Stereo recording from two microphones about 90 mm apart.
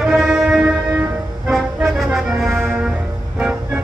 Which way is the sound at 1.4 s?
5° right (ahead or behind).